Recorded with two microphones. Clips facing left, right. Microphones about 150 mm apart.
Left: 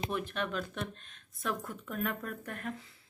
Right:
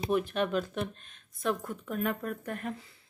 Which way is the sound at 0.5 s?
15° right (ahead or behind).